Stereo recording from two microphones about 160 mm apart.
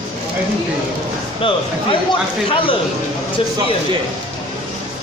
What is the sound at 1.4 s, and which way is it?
Speech, 30° left (ahead or behind).